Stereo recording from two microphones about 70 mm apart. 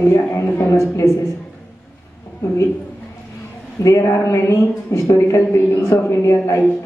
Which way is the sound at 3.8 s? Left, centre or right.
Left.